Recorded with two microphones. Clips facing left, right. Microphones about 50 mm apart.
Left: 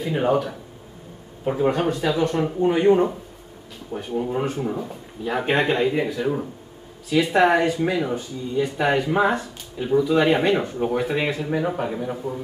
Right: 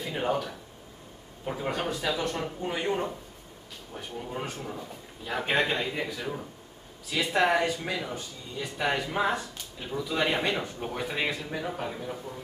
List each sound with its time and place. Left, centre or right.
0.0 s speech: centre
11.4 s speech: centre